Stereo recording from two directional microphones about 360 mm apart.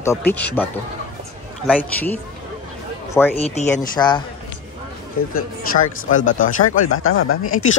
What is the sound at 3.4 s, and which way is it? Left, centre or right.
Speech, centre.